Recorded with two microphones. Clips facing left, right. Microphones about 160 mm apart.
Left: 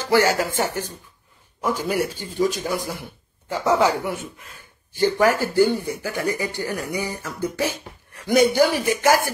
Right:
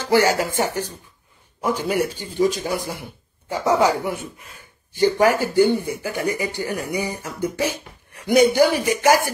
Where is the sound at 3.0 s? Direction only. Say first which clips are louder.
Right 1 dB; 15° right (ahead or behind).